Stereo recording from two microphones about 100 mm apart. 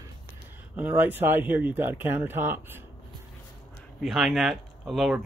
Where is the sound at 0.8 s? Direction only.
15° right (ahead or behind).